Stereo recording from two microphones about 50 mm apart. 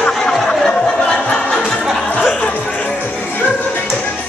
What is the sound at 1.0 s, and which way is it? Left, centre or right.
Music, centre.